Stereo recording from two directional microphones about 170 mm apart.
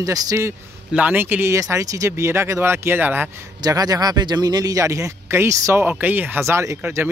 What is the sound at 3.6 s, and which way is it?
Speech, 20° right (ahead or behind).